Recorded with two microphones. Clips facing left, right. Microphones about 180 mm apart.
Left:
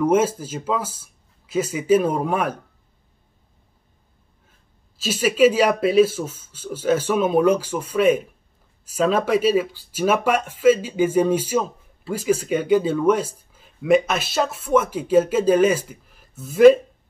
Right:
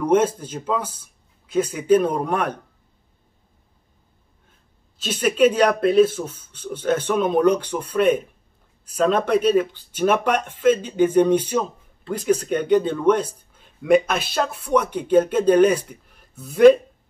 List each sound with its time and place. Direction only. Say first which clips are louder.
0.0 s speech: even; 5° left (ahead or behind)
5.0 s speech: left 1 dB; 5° left (ahead or behind)